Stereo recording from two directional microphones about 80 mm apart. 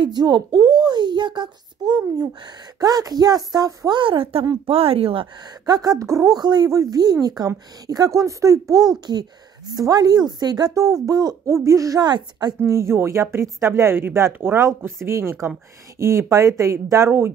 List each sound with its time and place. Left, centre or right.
0.0 s a woman's voice: right
4.0 s a woman's voice: right
5.2 s speech: right
6.3 s a woman's voice: right
6.7 s speech: right
8.9 s a woman's voice: right
10.8 s speech: right
11.4 s speech: right
12.0 s a woman's voice: right
12.6 s speech: right